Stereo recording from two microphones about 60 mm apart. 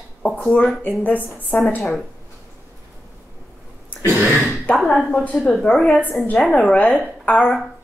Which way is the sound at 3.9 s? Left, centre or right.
Left.